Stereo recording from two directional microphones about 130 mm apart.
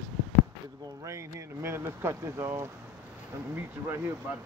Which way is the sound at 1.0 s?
20° right (ahead or behind).